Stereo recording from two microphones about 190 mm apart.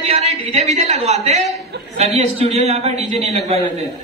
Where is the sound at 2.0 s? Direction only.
35° right (ahead or behind).